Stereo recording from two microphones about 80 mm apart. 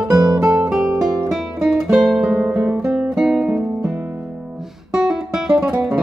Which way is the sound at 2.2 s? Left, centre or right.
Centre.